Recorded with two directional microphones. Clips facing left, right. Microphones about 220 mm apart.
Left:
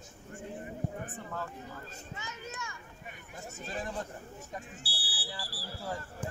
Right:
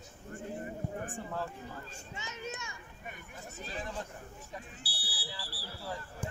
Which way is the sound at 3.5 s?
45° left (ahead or behind).